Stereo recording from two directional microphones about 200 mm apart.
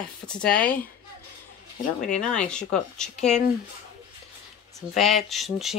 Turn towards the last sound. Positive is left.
turn(degrees=0)  # may be behind; listen again after turning